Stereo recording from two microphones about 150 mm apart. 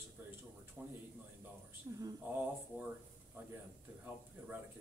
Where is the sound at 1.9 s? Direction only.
25° right (ahead or behind).